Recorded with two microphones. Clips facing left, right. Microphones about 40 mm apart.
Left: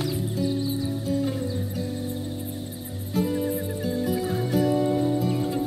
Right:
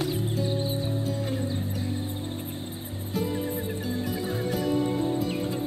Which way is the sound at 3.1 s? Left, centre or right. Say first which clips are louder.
Left 4 dB; centre.